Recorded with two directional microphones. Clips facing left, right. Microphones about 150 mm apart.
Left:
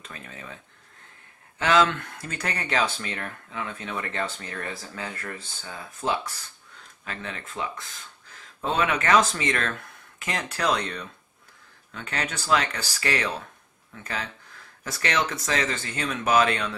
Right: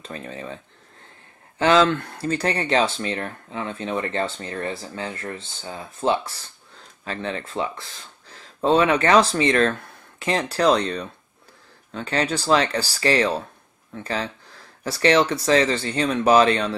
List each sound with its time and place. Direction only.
0.0 s speech: 30° right (ahead or behind)
1.6 s speech: 30° right (ahead or behind)